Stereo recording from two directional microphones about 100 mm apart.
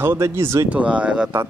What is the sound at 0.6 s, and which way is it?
Speech, 15° right (ahead or behind).